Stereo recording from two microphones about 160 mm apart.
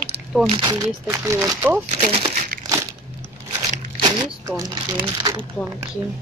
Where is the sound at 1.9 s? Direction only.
40° right (ahead or behind).